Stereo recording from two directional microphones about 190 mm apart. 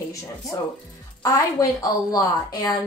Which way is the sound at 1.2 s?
20° left (ahead or behind).